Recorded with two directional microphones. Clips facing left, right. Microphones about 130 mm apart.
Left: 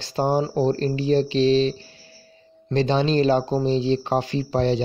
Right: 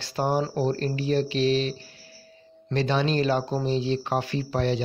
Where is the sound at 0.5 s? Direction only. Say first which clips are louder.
Left 5 dB; 30° left (ahead or behind).